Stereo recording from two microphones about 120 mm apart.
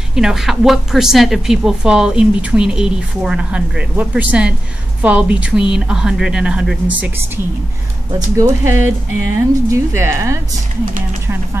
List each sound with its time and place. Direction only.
0.1 s a woman's voice: 5° right (ahead or behind)
8.4 s speech: 20° right (ahead or behind)